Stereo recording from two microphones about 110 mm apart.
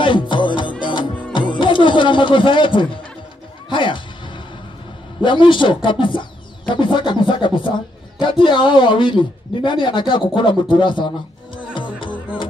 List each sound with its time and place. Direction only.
0.0 s music: 50° left (ahead or behind)
5.2 s a man's voice: 50° left (ahead or behind)
11.5 s music: 45° left (ahead or behind)